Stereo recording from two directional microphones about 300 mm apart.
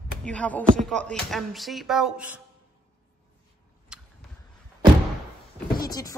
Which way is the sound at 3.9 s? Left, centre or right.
Centre.